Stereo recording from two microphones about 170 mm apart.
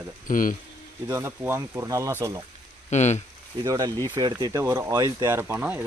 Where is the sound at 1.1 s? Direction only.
15° right (ahead or behind).